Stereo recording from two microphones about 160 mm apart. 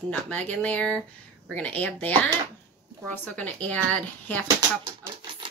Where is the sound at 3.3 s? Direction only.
10° left (ahead or behind).